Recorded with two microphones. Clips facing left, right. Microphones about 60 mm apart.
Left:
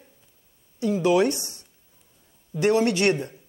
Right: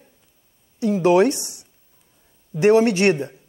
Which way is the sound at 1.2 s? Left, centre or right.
Centre.